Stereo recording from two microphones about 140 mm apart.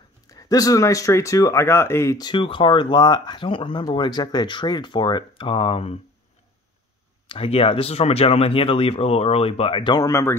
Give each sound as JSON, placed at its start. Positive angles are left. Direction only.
{"t": 0.3, "sound": "speech", "side_deg": 25}
{"t": 7.2, "sound": "speech", "side_deg": 45}